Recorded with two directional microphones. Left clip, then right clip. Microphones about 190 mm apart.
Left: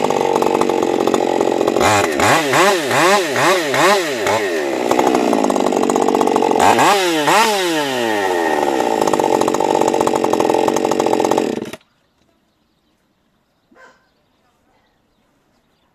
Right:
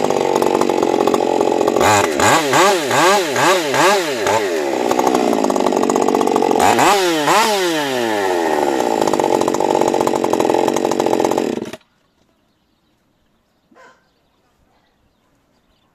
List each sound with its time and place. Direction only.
0.0 s chainsaw: 5° left (ahead or behind)